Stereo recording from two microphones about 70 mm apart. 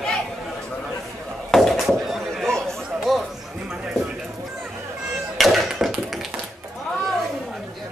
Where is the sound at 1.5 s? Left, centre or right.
Centre.